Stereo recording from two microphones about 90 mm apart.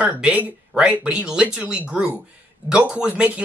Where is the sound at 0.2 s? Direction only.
15° right (ahead or behind).